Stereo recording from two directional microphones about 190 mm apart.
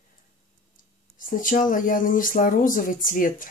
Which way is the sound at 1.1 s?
45° left (ahead or behind).